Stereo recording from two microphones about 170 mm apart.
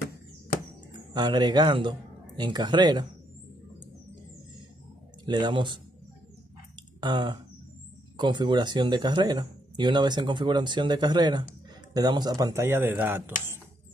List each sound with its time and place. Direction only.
1.1 s speech: 25° right (ahead or behind)
5.2 s speech: 25° right (ahead or behind)
7.0 s speech: 25° right (ahead or behind)